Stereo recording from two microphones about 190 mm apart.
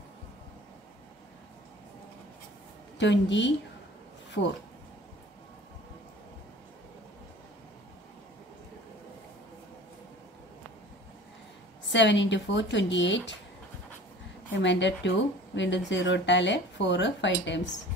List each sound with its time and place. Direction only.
3.0 s speech: 70° left (ahead or behind)
11.9 s speech: 70° left (ahead or behind)
14.5 s speech: 70° left (ahead or behind)